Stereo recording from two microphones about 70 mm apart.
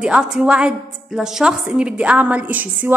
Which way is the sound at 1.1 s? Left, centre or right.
Centre.